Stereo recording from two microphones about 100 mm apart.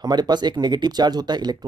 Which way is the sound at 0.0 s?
45° right (ahead or behind).